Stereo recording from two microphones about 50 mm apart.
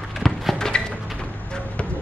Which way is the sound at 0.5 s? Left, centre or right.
Centre.